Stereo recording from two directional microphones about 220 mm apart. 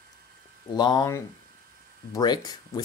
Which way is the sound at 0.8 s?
20° left (ahead or behind).